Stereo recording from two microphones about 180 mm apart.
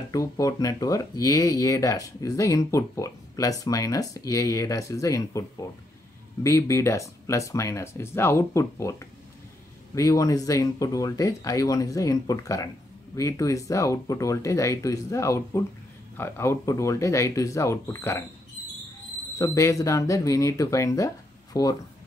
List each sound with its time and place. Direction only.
0.1 s speech: 20° left (ahead or behind)
9.9 s speech: 20° left (ahead or behind)
19.3 s speech: 15° left (ahead or behind)